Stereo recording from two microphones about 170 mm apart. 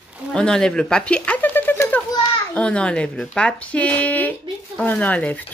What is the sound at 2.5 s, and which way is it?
A woman's voice, 5° left (ahead or behind).